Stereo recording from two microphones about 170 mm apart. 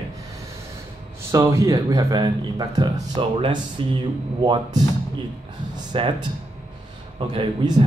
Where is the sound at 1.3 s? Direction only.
15° right (ahead or behind).